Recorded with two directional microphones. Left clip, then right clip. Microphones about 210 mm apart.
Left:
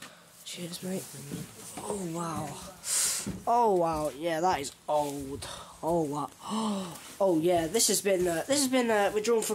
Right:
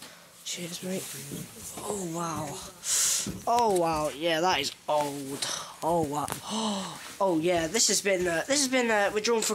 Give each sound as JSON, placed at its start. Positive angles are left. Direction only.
{"t": 0.5, "sound": "speech", "side_deg": 5}
{"t": 6.1, "sound": "speech", "side_deg": 15}